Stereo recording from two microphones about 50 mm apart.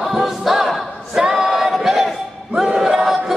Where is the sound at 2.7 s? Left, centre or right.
Centre.